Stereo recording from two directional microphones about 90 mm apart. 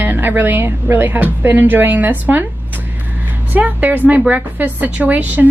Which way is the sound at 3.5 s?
20° right (ahead or behind).